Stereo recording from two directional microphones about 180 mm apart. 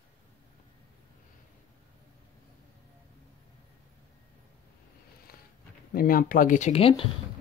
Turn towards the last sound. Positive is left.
turn(degrees=30)  # may be behind; listen again after turning